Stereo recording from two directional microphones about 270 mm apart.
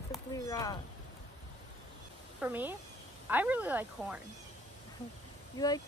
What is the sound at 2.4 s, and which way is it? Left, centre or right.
Speech, centre.